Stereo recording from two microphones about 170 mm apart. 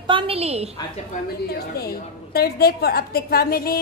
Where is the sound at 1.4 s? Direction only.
65° left (ahead or behind).